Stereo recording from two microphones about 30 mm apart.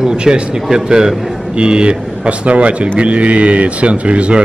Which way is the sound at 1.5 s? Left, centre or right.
Right.